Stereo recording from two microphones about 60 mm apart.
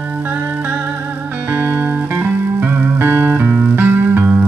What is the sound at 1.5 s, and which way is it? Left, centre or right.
Music, right.